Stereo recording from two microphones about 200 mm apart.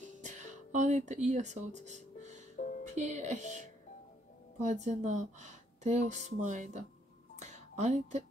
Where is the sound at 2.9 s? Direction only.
35° right (ahead or behind).